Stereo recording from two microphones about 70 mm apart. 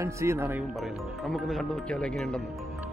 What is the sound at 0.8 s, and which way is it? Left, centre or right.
Speech, centre.